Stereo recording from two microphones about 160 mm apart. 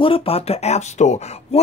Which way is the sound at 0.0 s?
35° left (ahead or behind).